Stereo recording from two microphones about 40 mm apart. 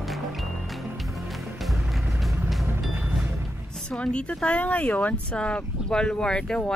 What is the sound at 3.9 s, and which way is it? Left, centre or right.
Speech, left.